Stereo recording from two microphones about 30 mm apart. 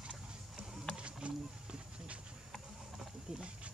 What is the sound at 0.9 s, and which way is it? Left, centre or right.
Wild animals, right.